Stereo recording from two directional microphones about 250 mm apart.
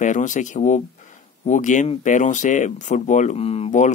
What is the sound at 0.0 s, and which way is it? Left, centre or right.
Speech, left.